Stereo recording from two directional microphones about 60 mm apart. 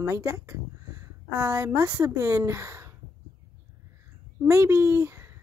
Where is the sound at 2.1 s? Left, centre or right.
Right.